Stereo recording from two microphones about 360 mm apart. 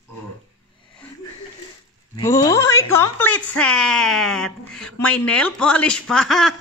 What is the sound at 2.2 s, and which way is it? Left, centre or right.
Speech, centre.